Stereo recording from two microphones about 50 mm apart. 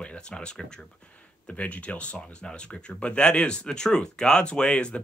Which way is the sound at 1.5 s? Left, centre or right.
Left.